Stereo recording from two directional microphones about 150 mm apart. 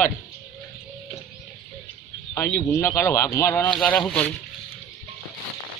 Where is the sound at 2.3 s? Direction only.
15° left (ahead or behind).